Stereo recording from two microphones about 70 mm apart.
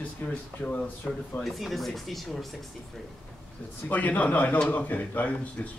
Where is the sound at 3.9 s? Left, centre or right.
Left.